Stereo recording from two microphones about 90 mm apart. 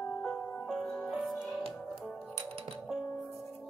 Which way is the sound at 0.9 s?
10° left (ahead or behind).